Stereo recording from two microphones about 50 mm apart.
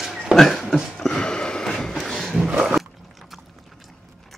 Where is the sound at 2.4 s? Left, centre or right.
Centre.